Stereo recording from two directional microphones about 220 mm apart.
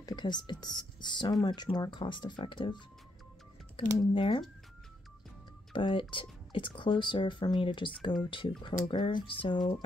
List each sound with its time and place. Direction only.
0.0 s speech: 20° left (ahead or behind)
4.0 s speech: 20° left (ahead or behind)
5.7 s speech: 20° left (ahead or behind)